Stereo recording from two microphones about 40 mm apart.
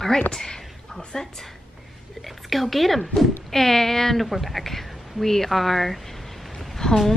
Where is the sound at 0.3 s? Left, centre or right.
Centre.